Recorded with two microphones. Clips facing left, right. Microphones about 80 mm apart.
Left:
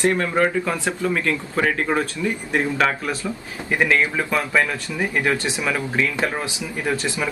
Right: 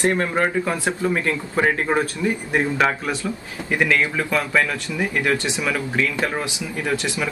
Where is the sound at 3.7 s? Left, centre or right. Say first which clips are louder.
Left 1 dB; centre.